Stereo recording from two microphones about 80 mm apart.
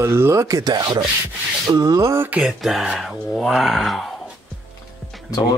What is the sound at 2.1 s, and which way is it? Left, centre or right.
Speech, right.